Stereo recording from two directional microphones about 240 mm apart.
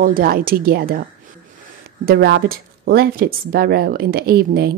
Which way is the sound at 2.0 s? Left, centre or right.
Right.